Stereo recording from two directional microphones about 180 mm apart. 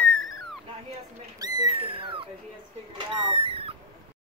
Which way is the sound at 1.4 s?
20° right (ahead or behind).